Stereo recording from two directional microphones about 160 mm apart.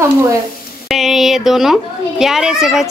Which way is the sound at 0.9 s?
Centre (ahead or behind).